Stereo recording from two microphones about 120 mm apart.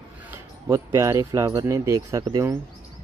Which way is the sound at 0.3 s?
25° right (ahead or behind).